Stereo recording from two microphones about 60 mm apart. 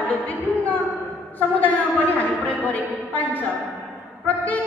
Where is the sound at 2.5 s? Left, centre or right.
Left.